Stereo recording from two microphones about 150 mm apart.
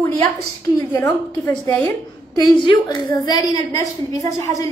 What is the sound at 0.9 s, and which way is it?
Speech, 10° left (ahead or behind).